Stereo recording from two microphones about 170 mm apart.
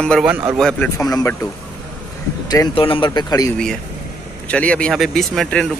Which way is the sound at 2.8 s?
30° left (ahead or behind).